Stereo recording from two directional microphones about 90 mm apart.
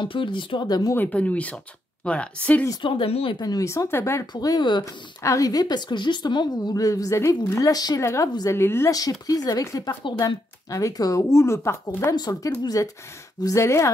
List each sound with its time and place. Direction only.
0.0 s speech: 65° left (ahead or behind)
0.7 s a woman's voice: 45° left (ahead or behind)
0.9 s speech: 20° left (ahead or behind)
2.8 s speech: 70° left (ahead or behind)
3.3 s speech: 45° left (ahead or behind)
4.3 s speech: 50° left (ahead or behind)
5.2 s a woman's voice: 40° left (ahead or behind)
8.0 s speech: 35° left (ahead or behind)
9.3 s a woman's voice: 45° left (ahead or behind)
12.2 s a woman's voice: 45° left (ahead or behind)